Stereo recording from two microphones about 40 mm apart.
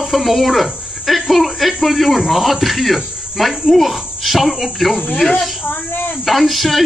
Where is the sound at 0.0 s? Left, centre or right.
Centre.